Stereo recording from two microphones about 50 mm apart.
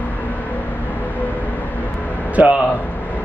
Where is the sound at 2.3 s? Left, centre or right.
Right.